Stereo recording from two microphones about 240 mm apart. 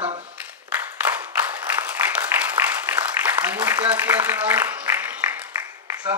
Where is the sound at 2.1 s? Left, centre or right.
Centre.